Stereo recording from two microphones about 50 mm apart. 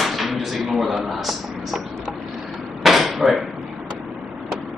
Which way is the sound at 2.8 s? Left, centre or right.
Centre.